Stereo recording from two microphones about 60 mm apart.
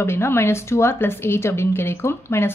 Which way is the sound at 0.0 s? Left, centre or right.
Left.